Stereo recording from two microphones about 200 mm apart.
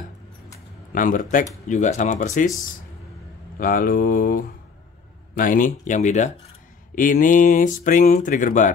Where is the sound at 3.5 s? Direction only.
45° left (ahead or behind).